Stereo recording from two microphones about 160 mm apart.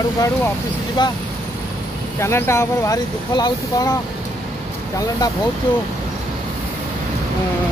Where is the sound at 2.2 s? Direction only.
15° left (ahead or behind).